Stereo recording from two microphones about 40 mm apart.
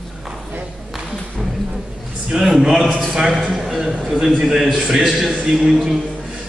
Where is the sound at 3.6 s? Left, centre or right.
Centre.